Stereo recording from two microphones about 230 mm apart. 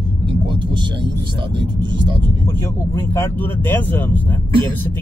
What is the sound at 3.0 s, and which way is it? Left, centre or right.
Speech, centre.